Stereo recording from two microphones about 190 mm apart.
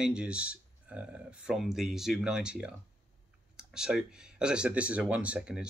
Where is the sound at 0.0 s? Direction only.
5° right (ahead or behind).